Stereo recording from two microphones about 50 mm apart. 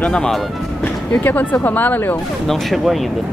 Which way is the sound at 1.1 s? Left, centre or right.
Left.